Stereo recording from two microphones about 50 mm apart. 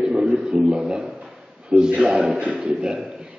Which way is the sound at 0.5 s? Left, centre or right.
Centre.